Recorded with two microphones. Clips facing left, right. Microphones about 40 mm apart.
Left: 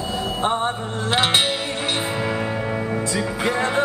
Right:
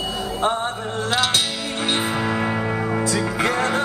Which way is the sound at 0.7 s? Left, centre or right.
Left.